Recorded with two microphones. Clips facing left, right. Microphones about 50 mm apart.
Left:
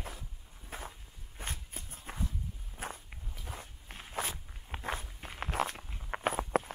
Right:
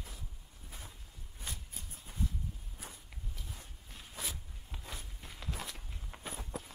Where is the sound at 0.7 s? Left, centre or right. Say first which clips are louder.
Left 9 dB; left.